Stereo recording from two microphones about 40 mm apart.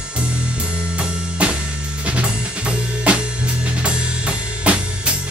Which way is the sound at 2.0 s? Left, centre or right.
Right.